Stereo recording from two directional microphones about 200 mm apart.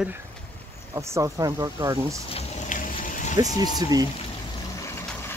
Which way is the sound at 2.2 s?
35° left (ahead or behind).